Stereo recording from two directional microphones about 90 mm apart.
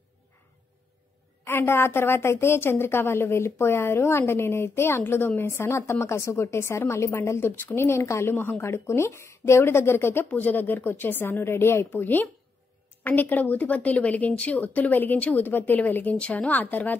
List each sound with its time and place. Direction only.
1.4 s a woman's voice: 25° left (ahead or behind)